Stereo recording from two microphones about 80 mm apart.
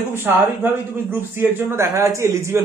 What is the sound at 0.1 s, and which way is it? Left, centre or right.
Speech, right.